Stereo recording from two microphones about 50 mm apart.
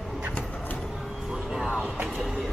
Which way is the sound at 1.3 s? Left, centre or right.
Centre.